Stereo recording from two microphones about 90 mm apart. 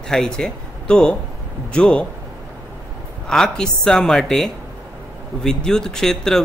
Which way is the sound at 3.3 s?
5° left (ahead or behind).